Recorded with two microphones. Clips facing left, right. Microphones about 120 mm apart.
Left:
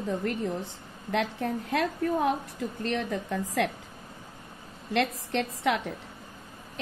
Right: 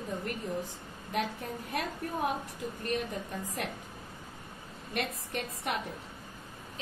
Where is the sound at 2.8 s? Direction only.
85° left.